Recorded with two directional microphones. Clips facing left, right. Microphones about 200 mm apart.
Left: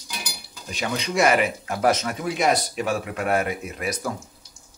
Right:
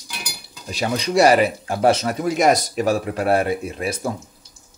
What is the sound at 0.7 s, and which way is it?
Speech, 35° right (ahead or behind).